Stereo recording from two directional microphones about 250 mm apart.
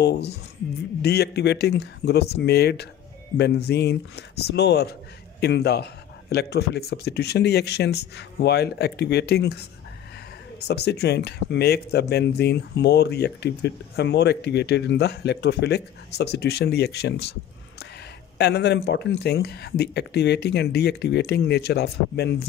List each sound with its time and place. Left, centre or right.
0.0 s speech: left
10.7 s speech: left
18.4 s speech: left